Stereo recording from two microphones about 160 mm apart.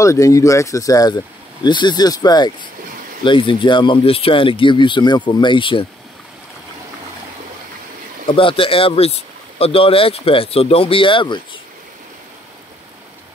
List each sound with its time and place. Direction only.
0.0 s speech: 20° left (ahead or behind)
8.3 s speech: 35° left (ahead or behind)